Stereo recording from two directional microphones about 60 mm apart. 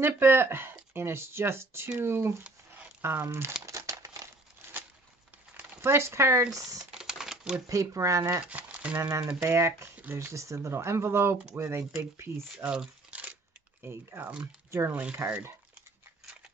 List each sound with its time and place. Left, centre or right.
0.0 s speech: right
2.4 s a sound: right
3.0 s speech: right
3.6 s crumpling: right
5.6 s speech: right
6.5 s speech: right
6.9 s a sound: centre
7.6 s speech: right
8.5 s crumpling: right
8.9 s speech: right
12.5 s speech: centre
13.8 s speech: right